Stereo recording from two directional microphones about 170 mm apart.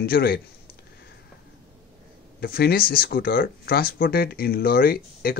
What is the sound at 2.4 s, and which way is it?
Speech, 65° left (ahead or behind).